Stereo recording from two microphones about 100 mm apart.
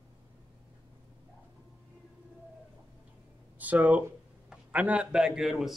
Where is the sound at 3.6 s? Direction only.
15° right (ahead or behind).